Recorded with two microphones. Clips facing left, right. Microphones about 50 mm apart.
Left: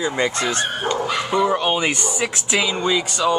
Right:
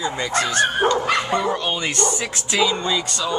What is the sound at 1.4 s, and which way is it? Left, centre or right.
Speech, centre.